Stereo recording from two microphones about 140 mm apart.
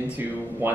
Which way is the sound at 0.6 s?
15° right (ahead or behind).